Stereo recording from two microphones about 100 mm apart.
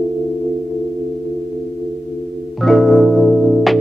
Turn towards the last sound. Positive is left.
turn(degrees=0)  # may be behind; listen again after turning